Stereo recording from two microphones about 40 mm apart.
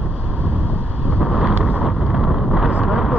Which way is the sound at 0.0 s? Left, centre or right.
Right.